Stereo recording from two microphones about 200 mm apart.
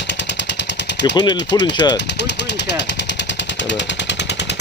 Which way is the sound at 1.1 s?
20° left (ahead or behind).